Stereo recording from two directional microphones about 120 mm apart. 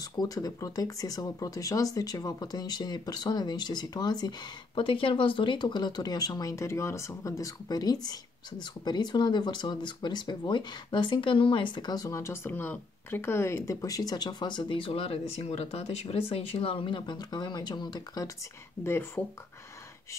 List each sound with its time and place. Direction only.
0.0 s speech: 30° left (ahead or behind)
18.9 s speech: 20° left (ahead or behind)